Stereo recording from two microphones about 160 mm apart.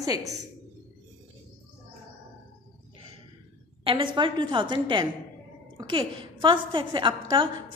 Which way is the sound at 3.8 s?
30° right (ahead or behind).